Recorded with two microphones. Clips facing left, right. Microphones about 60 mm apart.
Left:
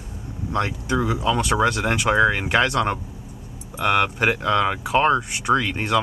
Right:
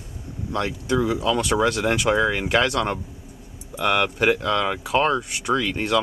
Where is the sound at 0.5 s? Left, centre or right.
Centre.